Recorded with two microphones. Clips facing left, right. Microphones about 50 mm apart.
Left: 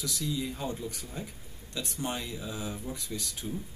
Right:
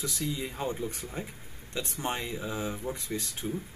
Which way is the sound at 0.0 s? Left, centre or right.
Right.